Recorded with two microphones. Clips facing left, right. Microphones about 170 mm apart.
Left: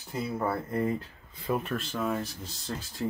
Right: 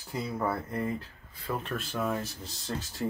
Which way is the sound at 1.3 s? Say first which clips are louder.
Left 5 dB; 20° left (ahead or behind).